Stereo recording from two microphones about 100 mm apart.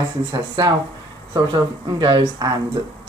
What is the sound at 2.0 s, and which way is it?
Speech, 50° right (ahead or behind).